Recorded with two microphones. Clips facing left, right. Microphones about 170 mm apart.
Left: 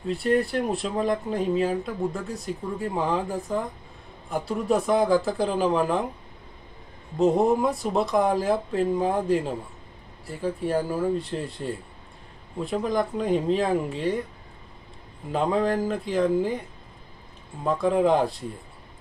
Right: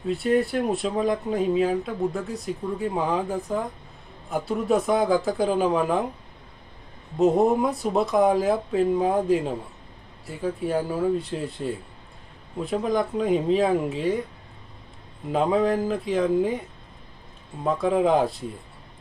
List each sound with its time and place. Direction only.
0.1 s speech: centre (ahead or behind)
7.2 s speech: centre (ahead or behind)
10.7 s speech: 5° right (ahead or behind)
15.3 s speech: centre (ahead or behind)
17.6 s speech: centre (ahead or behind)